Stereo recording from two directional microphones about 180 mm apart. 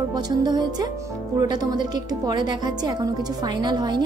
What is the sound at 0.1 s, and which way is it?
Speech, 20° right (ahead or behind).